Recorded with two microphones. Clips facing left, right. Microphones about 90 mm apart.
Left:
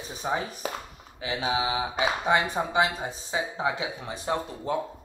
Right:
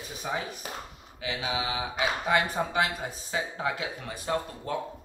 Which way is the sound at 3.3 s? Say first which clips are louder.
Left 3 dB; 20° left (ahead or behind).